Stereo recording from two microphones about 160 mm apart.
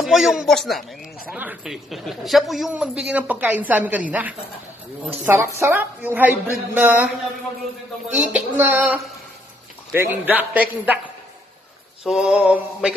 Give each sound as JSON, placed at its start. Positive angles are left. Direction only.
{"t": 0.0, "sound": "speech", "side_deg": 0}
{"t": 1.3, "sound": "a woman's voice", "side_deg": -10}
{"t": 5.3, "sound": "a woman's voice", "side_deg": -15}
{"t": 8.1, "sound": "a woman's voice", "side_deg": -10}
{"t": 9.9, "sound": "a woman's voice", "side_deg": -15}
{"t": 12.0, "sound": "speech", "side_deg": -5}